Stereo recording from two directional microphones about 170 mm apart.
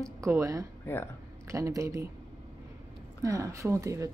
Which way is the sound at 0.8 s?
15° left (ahead or behind).